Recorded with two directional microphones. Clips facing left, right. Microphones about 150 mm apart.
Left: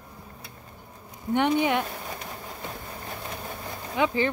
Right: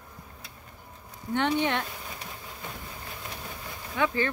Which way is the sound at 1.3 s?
10° left (ahead or behind).